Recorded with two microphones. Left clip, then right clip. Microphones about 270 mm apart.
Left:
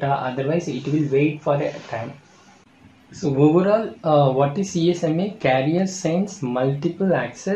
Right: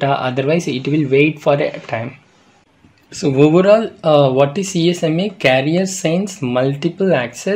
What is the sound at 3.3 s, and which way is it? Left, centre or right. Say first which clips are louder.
Speech: right 6 dB; right.